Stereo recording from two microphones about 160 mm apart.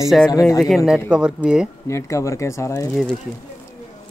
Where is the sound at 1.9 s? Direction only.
20° left (ahead or behind).